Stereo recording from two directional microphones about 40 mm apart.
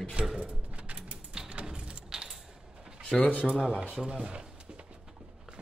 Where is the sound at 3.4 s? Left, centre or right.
Centre.